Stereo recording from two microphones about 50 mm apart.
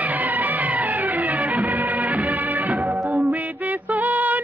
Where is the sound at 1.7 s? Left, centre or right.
Right.